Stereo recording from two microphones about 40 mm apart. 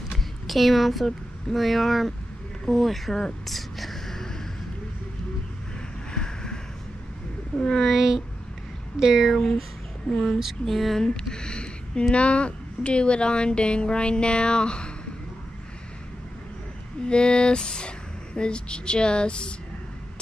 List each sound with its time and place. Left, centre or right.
0.5 s speech: centre
3.4 s a sound: centre
6.1 s a sound: centre
7.5 s speech: centre
7.8 s speech: centre
10.1 s speech: left
10.6 s speech: centre
11.0 s speech: centre
17.1 s speech: left